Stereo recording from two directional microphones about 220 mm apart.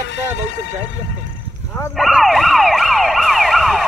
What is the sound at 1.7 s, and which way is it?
Ambulance, centre (ahead or behind).